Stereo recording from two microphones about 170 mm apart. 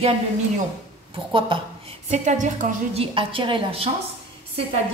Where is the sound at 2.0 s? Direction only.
45° right (ahead or behind).